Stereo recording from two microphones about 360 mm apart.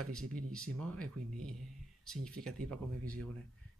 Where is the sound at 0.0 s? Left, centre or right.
Right.